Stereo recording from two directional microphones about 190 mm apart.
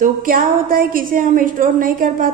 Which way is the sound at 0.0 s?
45° right (ahead or behind).